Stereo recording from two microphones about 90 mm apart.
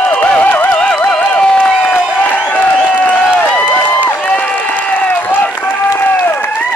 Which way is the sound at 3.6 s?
20° left (ahead or behind).